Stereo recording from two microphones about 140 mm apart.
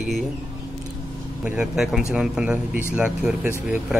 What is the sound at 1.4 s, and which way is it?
A man's voice, 10° right (ahead or behind).